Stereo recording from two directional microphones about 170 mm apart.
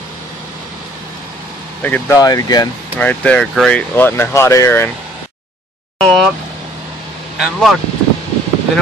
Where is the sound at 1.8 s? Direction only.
10° left (ahead or behind).